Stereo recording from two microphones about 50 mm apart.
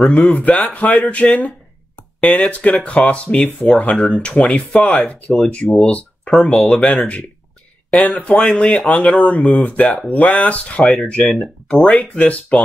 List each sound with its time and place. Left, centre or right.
0.1 s speech: left
11.2 s speech: centre
11.9 s speech: left